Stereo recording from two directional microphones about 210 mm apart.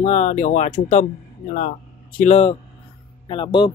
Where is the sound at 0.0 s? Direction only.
35° left (ahead or behind).